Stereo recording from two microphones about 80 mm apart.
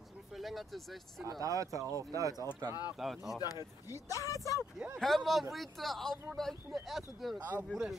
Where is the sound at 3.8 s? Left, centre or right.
Left.